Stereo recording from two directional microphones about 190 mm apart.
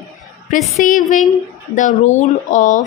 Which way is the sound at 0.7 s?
45° left (ahead or behind).